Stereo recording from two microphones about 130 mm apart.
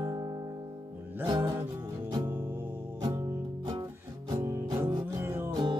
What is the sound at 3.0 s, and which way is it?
Music, 35° right (ahead or behind).